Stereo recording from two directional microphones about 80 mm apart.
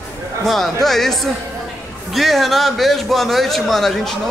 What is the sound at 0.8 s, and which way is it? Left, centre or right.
Speech, centre.